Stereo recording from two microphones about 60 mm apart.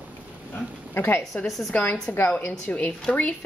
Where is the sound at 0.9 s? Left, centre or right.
Left.